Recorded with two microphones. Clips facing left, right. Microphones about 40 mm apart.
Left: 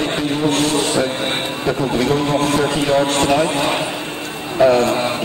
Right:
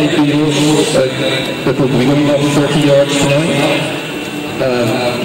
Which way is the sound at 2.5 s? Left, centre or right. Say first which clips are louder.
Right 7 dB; right.